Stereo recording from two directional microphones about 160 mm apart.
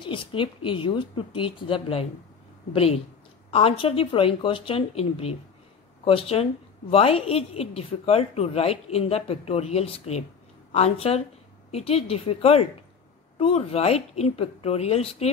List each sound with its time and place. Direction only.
0.0 s a woman's voice: 30° left (ahead or behind)